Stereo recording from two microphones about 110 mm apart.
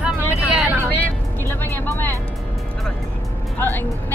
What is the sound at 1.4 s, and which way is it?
Speech, 20° left (ahead or behind).